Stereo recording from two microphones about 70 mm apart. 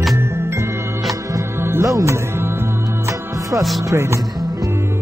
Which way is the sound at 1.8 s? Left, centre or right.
Right.